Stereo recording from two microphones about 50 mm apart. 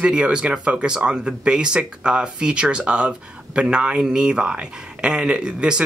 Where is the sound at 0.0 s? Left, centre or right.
Right.